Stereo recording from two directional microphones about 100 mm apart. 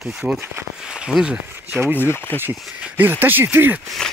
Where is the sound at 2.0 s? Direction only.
20° left (ahead or behind).